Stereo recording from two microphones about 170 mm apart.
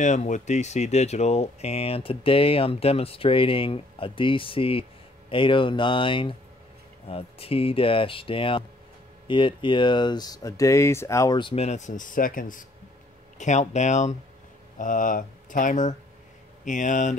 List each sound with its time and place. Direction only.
0.0 s speech: 45° left (ahead or behind)